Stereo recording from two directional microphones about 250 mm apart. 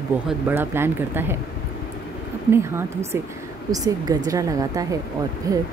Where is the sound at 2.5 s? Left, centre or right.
Centre.